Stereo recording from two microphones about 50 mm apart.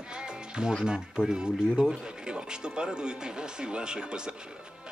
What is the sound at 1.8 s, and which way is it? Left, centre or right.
Music, centre.